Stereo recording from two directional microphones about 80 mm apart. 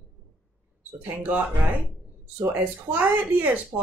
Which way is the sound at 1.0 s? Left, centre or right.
Right.